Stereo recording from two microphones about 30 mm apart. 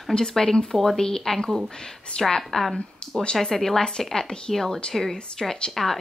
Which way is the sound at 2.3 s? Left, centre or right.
Centre.